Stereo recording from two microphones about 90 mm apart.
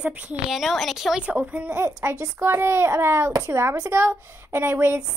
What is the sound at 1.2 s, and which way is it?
A woman's voice, 15° right (ahead or behind).